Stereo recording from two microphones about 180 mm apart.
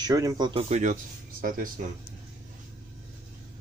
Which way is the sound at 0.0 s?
20° right (ahead or behind).